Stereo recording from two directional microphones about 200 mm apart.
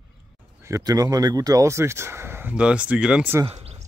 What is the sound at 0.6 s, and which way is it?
Speech, 15° right (ahead or behind).